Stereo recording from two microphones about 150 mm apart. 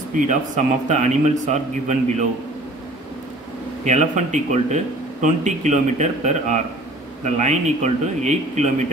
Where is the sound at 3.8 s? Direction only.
55° right (ahead or behind).